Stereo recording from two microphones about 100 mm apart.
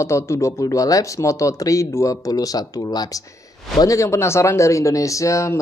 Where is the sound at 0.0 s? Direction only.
30° left (ahead or behind).